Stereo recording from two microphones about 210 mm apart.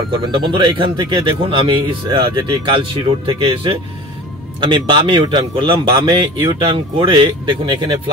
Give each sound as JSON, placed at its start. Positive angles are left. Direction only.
{"t": 0.1, "sound": "a man's voice", "side_deg": -25}